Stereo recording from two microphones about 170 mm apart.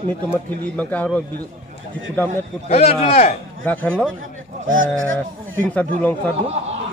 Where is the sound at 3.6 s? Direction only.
10° left (ahead or behind).